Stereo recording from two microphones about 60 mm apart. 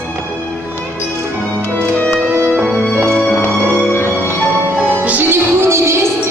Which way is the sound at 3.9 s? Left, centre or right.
Left.